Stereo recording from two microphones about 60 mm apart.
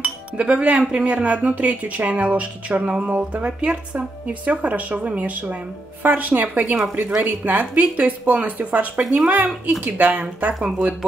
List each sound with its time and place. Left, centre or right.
0.0 s speech: right
9.0 s speech: centre
9.9 s speech: right